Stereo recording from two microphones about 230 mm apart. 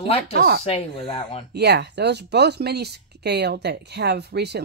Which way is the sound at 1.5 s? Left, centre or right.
Right.